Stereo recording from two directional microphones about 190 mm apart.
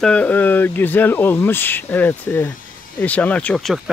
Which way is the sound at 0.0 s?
5° left (ahead or behind).